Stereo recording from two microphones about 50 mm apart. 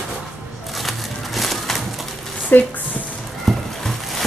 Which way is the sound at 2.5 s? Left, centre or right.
Left.